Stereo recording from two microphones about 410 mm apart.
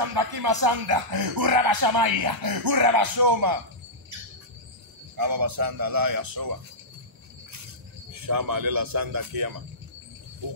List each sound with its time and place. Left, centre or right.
0.1 s speech: right
5.1 s speech: right
8.1 s speech: right
10.4 s a sound: right